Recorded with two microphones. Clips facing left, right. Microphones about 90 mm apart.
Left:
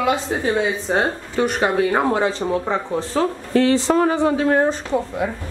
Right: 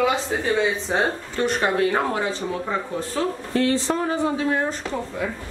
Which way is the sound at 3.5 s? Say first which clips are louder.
Left 6 dB; 90° left.